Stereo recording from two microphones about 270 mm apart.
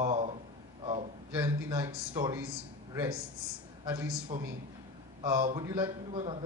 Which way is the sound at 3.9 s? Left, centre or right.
Centre.